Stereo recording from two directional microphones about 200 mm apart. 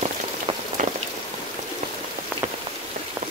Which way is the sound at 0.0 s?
35° right (ahead or behind).